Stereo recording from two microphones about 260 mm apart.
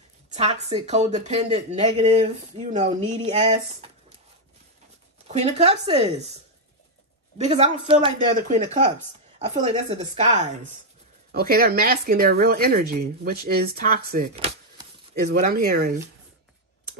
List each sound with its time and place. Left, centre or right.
0.3 s speech: right
5.3 s speech: right
7.3 s speech: right
10.1 s speech: right
14.3 s a sound: right
15.2 s speech: right